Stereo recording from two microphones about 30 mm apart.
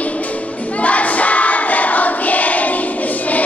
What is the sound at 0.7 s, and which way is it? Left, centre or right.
Choir, left.